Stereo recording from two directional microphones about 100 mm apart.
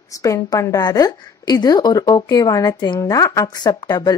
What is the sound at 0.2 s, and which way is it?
A woman's voice, 30° left (ahead or behind).